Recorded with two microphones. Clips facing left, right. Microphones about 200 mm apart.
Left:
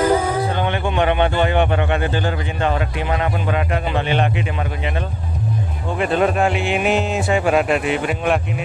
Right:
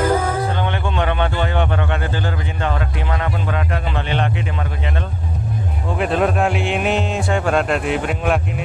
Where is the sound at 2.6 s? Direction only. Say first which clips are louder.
Left 3 dB; 15° left (ahead or behind).